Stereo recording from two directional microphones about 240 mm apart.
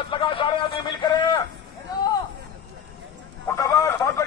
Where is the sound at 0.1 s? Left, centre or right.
Left.